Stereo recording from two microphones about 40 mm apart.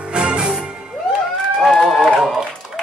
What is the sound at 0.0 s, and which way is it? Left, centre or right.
Music, right.